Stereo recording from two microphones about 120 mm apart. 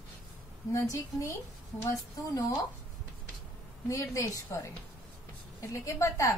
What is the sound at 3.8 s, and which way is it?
Speech, 25° left (ahead or behind).